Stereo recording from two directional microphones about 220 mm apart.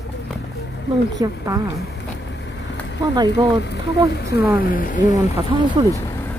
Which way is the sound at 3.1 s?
20° right (ahead or behind).